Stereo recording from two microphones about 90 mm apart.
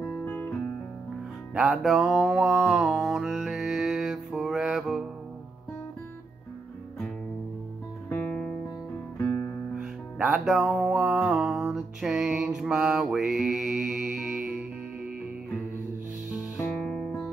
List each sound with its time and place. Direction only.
0.0 s music: 20° left (ahead or behind)
1.5 s music: 5° right (ahead or behind)
8.1 s music: 10° left (ahead or behind)
9.2 s guitar: 30° left (ahead or behind)
9.8 s music: 5° right (ahead or behind)
16.7 s music: 10° left (ahead or behind)